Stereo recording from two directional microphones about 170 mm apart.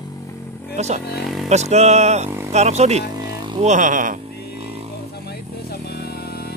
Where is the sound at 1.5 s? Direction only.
40° right (ahead or behind).